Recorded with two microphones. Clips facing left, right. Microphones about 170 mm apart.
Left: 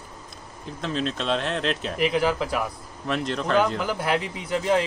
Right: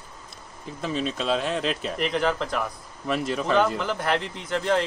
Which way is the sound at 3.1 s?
5° right (ahead or behind).